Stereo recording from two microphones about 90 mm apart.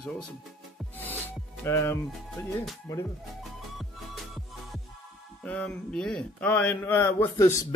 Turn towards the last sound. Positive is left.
turn(degrees=35)  # may be behind; listen again after turning